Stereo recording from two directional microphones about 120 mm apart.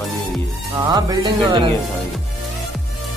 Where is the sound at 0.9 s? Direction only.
35° right (ahead or behind).